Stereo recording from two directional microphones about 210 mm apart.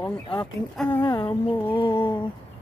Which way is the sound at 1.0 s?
25° left (ahead or behind).